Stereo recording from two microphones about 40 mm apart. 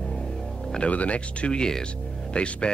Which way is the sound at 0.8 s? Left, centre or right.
Left.